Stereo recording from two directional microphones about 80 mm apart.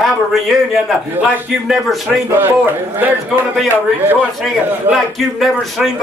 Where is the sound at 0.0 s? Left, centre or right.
Centre.